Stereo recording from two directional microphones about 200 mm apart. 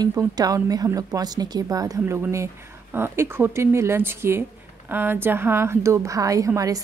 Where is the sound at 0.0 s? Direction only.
20° right (ahead or behind).